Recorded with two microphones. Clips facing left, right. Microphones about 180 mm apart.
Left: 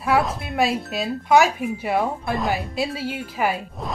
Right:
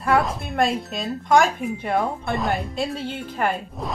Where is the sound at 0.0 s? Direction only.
Centre (ahead or behind).